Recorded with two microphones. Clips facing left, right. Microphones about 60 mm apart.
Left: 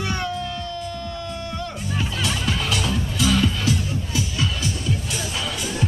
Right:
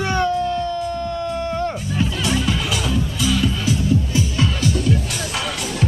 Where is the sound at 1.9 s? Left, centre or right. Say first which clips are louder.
Right 3 dB; centre.